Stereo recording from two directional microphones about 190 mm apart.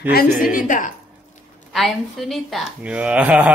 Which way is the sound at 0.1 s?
50° left (ahead or behind).